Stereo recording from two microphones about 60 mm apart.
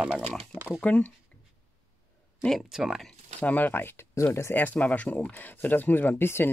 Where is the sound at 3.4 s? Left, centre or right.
Left.